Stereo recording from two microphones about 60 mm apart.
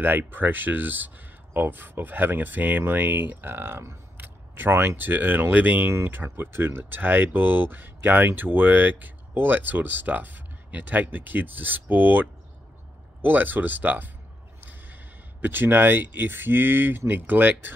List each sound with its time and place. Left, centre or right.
0.0 s speech: right
14.6 s a sound: right
15.4 s speech: right